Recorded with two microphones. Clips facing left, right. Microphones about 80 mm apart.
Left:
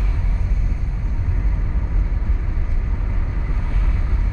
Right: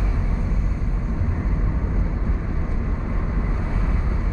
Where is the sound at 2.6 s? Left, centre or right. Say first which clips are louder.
Right 4 dB; right.